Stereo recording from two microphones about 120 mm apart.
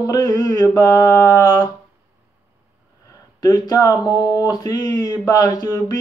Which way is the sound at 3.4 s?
30° left (ahead or behind).